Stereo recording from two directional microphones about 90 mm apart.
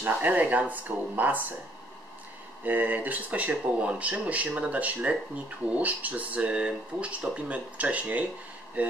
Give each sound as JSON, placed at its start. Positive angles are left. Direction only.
{"t": 0.0, "sound": "speech", "side_deg": -15}
{"t": 2.6, "sound": "speech", "side_deg": -20}